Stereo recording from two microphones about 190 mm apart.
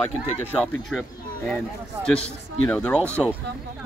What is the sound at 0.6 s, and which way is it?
Speech, centre (ahead or behind).